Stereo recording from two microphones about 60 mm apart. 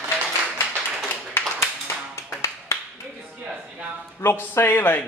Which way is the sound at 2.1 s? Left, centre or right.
Left.